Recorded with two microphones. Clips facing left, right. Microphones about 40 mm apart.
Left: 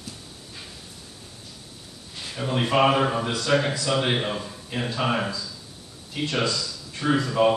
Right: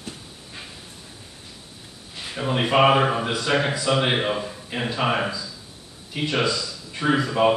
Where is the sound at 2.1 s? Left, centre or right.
Centre.